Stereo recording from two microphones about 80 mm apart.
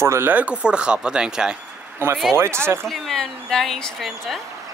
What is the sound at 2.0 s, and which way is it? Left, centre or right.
Speech, right.